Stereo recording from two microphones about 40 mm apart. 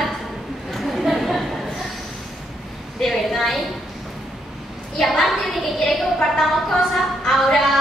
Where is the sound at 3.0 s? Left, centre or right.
Centre.